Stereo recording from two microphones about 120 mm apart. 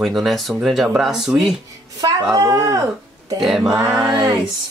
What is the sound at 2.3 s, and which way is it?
Speech, 30° right (ahead or behind).